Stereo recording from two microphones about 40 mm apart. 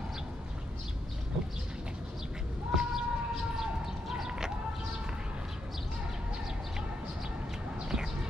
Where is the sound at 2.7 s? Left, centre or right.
Centre.